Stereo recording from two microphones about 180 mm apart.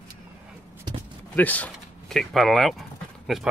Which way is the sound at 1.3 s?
10° left (ahead or behind).